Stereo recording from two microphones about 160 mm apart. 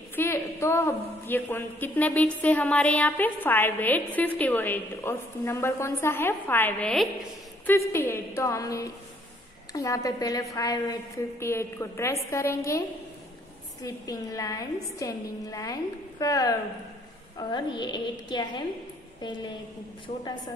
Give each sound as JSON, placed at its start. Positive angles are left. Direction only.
{"t": 0.1, "sound": "a woman's voice", "side_deg": 15}
{"t": 13.8, "sound": "a woman's voice", "side_deg": 20}